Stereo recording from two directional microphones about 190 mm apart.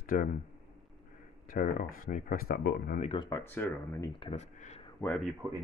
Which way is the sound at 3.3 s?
10° left (ahead or behind).